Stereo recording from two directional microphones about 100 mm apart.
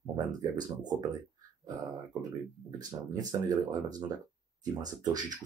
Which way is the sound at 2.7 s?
40° right (ahead or behind).